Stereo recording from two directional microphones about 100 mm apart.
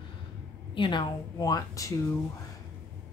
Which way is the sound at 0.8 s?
50° left (ahead or behind).